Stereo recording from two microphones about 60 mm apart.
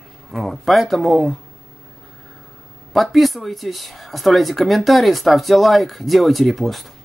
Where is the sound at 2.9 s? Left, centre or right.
Centre.